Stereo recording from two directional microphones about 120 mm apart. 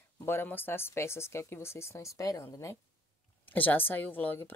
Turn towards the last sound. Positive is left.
turn(degrees=15)  # may be behind; listen again after turning